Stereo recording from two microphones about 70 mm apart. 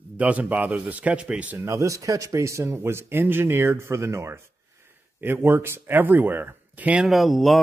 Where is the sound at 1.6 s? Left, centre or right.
Right.